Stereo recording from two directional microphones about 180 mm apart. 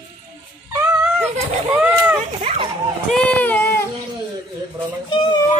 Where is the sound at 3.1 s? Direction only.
10° left (ahead or behind).